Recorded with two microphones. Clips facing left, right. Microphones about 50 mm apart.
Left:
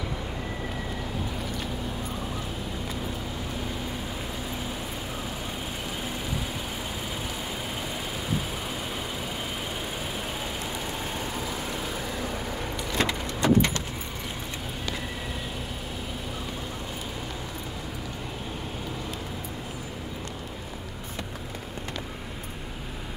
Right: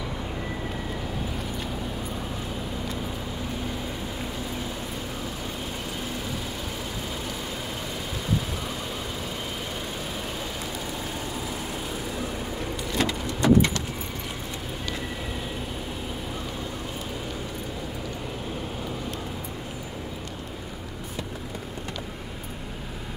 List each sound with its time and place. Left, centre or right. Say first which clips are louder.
12.9 s vehicle: right 1 dB; left